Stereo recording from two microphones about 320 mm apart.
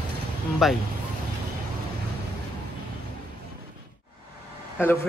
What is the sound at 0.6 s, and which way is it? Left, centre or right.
Speech, centre.